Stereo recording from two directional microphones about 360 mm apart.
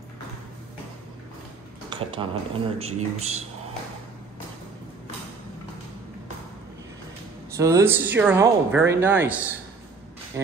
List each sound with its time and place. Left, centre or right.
1.9 s speech: centre
7.5 s speech: centre
10.4 s speech: centre